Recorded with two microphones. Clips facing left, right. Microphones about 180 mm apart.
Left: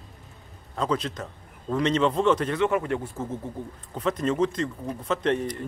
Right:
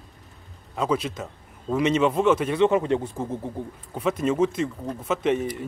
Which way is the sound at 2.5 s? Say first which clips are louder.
Right 4 dB; 20° right (ahead or behind).